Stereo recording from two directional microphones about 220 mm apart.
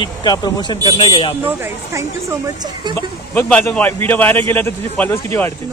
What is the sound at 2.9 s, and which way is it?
A man's voice, 10° left (ahead or behind).